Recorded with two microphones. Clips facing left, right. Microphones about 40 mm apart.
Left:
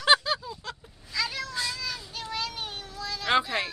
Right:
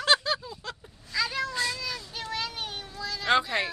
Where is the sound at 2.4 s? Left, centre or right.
Centre.